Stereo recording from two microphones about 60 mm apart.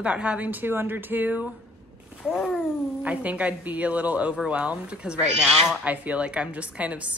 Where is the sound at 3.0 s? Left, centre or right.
Right.